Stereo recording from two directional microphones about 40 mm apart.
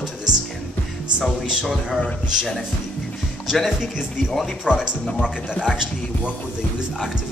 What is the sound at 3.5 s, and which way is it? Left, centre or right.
Speech, centre.